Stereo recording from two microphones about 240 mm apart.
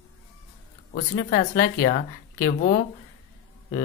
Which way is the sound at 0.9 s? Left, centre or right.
Left.